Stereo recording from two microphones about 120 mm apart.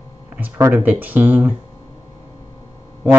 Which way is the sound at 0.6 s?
20° right (ahead or behind).